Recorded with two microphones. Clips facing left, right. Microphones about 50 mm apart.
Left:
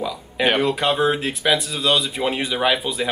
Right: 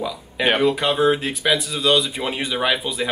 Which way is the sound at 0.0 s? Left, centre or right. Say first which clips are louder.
Left 1 dB; centre.